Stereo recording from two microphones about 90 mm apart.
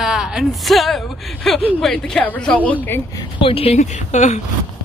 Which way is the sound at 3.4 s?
90° left.